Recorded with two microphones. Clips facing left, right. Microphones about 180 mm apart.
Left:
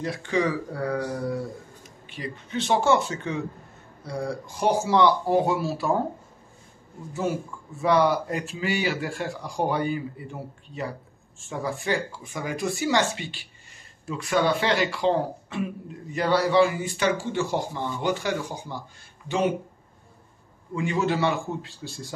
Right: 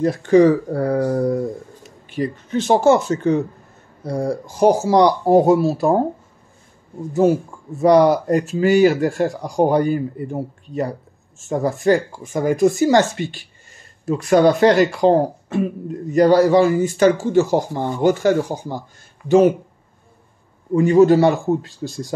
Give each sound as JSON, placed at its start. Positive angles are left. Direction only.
{"t": 0.0, "sound": "speech", "side_deg": -45}
{"t": 7.8, "sound": "speech", "side_deg": -45}
{"t": 20.7, "sound": "speech", "side_deg": -40}